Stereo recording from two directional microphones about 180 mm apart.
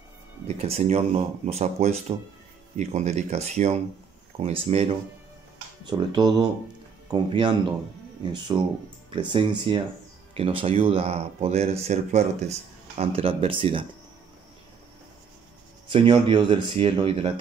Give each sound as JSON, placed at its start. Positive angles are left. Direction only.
{"t": 0.6, "sound": "speech", "side_deg": -35}
{"t": 5.9, "sound": "speech", "side_deg": -25}
{"t": 15.9, "sound": "speech", "side_deg": -30}